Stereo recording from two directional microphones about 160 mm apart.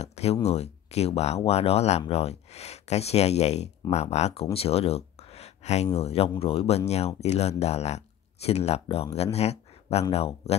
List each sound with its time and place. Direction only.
0.0 s speech: 40° left (ahead or behind)